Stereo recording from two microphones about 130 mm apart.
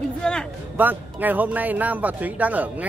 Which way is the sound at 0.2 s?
5° left (ahead or behind).